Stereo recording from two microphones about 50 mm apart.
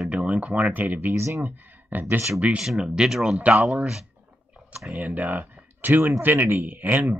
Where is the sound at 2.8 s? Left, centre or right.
Centre.